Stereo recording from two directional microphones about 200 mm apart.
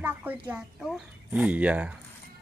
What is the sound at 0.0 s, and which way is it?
A woman's voice, 10° right (ahead or behind).